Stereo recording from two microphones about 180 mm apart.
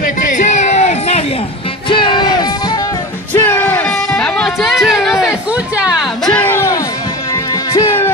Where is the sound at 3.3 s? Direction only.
10° left (ahead or behind); by 5.9 s 5° right (ahead or behind).